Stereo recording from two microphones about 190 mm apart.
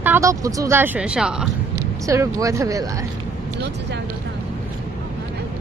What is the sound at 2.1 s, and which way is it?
Speech, 15° right (ahead or behind).